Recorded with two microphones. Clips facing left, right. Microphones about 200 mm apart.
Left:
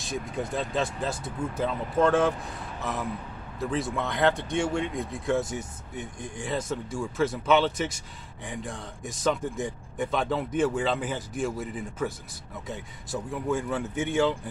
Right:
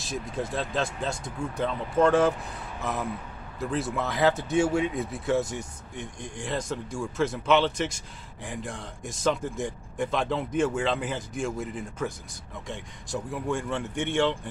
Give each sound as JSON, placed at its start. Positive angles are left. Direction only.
{"t": 0.0, "sound": "speech", "side_deg": 0}